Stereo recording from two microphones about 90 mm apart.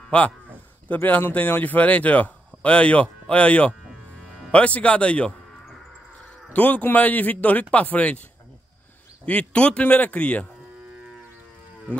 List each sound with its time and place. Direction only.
0.1 s speech: 15° left (ahead or behind)
3.8 s livestock: 5° left (ahead or behind)
6.5 s speech: 15° left (ahead or behind)
9.2 s speech: 15° left (ahead or behind)